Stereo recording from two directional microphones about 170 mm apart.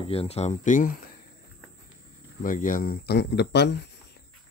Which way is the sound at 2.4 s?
50° left (ahead or behind).